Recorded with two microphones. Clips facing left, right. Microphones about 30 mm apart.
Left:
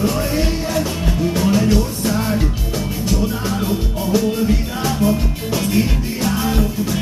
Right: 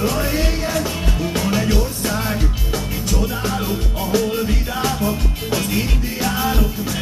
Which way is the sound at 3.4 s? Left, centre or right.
Centre.